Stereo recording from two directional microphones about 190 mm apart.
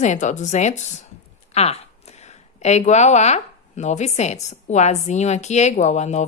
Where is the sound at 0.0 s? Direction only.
40° left (ahead or behind).